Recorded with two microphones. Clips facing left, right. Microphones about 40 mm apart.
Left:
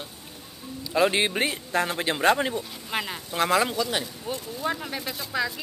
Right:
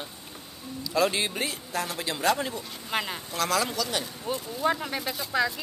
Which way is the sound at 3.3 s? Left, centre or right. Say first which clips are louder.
Left 5 dB; left.